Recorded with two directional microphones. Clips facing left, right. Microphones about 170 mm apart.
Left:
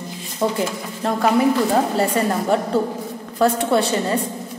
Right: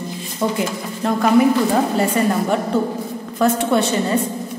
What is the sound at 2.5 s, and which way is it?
Speech, 35° left (ahead or behind).